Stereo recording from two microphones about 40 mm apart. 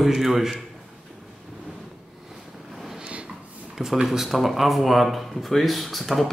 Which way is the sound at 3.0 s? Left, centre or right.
Right.